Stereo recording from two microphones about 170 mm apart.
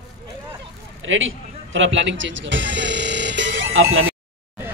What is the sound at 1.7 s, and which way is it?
Speech, 90° right.